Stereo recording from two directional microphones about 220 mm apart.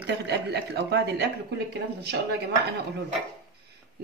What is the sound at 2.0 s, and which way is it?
Speech, 50° right (ahead or behind).